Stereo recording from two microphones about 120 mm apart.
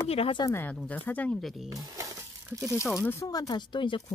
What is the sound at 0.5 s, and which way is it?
Speech, 15° left (ahead or behind).